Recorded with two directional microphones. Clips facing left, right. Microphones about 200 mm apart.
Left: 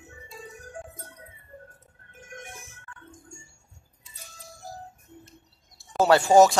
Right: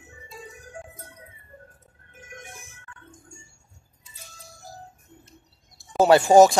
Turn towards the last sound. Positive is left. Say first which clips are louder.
# right 3 dB
turn(degrees=-15)  # may be behind; listen again after turning